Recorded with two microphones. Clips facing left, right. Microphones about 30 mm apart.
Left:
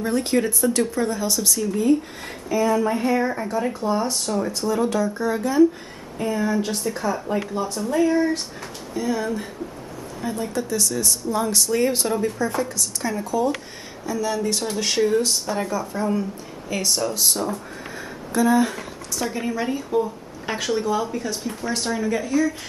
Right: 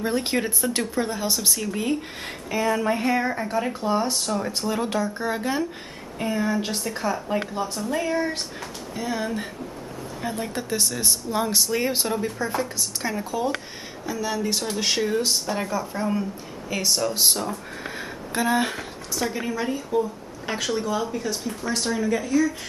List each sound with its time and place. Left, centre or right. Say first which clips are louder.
0.0 s speech: left 3 dB; right
1.8 s speech: left 6 dB; right
2.7 s speech: right 1 dB; right
4.5 s speech: left 3 dB; right
10.2 s speech: left 3 dB; right
11.2 s speech: left 1 dB; centre
14.0 s speech: left 3 dB; centre
17.1 s speech: right 1 dB; right
17.9 s a sound: left 4 dB; right
19.2 s speech: left 2 dB; centre